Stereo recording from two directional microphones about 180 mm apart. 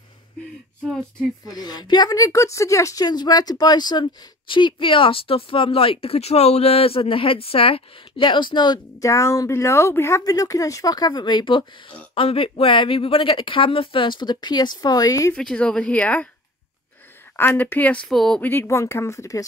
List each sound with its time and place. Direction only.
1.4 s a woman's voice: 20° left (ahead or behind)
15.3 s speech: 5° left (ahead or behind)
17.4 s speech: 10° left (ahead or behind)